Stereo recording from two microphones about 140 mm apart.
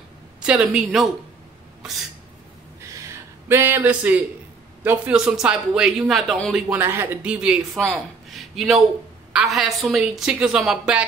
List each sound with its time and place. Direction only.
0.4 s a woman's voice: 10° right (ahead or behind)
2.9 s a sound: 20° right (ahead or behind)
4.8 s a woman's voice: 10° right (ahead or behind)
6.7 s a woman's voice: 15° right (ahead or behind)